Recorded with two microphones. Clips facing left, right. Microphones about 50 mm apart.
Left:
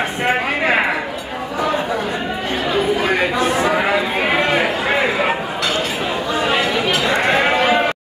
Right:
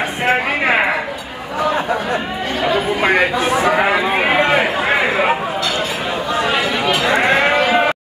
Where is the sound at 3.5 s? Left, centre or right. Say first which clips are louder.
Right 2 dB; centre.